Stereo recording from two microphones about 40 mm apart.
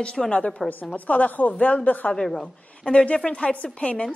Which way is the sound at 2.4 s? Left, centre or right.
Left.